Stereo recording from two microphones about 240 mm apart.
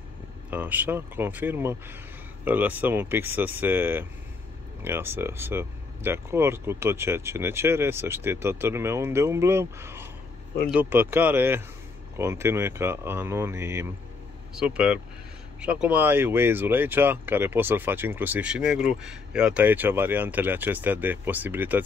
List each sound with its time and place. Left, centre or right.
0.5 s speech: centre